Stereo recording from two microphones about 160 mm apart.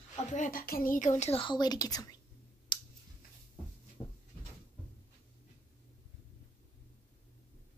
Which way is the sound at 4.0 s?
40° left (ahead or behind).